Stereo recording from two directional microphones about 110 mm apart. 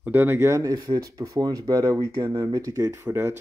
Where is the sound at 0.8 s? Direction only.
40° right (ahead or behind).